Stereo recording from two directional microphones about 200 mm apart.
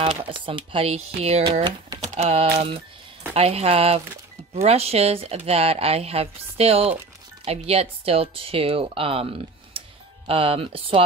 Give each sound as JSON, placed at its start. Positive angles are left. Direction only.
{"t": 0.0, "sound": "speech", "side_deg": -25}
{"t": 9.8, "sound": "music", "side_deg": -30}